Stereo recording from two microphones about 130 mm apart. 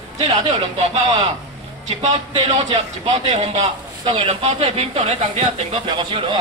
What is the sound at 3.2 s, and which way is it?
Speech, 55° right (ahead or behind).